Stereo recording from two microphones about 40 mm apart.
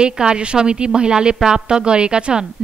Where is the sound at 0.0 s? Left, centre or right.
Right.